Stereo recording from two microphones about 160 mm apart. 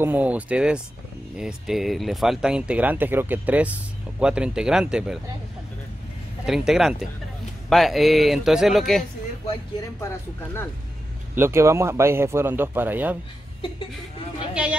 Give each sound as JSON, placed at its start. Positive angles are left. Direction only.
{"t": 0.0, "sound": "speech", "side_deg": -10}
{"t": 6.4, "sound": "speech", "side_deg": 0}
{"t": 10.0, "sound": "speech", "side_deg": 15}
{"t": 11.3, "sound": "speech", "side_deg": -15}
{"t": 14.5, "sound": "speech", "side_deg": -5}